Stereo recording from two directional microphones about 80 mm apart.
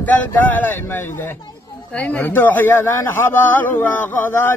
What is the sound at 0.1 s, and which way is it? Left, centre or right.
Speech, left.